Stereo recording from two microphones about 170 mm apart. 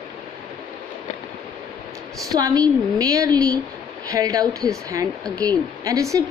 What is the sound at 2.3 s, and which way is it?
A woman's voice, 20° right (ahead or behind).